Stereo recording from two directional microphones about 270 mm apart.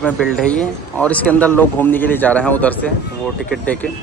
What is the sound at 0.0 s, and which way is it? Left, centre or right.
Speech, centre.